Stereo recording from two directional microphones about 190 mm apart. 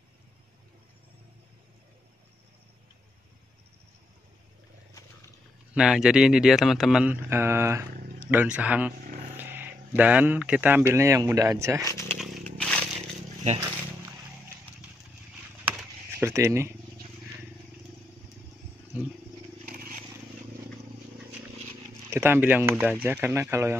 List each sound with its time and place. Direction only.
5.8 s speech: 5° right (ahead or behind)
11.8 s speech: 15° left (ahead or behind)
12.4 s a sound: 5° left (ahead or behind)
16.2 s speech: 15° right (ahead or behind)
18.9 s speech: 10° right (ahead or behind)
19.6 s a sound: 50° right (ahead or behind)
22.1 s speech: 10° right (ahead or behind)